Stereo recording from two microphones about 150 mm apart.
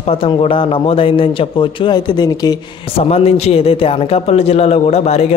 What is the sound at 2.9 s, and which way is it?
A man's voice, 40° left (ahead or behind).